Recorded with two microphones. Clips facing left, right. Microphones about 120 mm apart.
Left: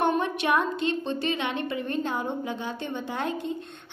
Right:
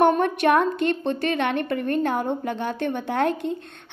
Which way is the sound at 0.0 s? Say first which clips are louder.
Right 6 dB; 50° right (ahead or behind).